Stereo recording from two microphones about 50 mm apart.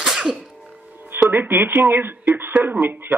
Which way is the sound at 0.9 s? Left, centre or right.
Right.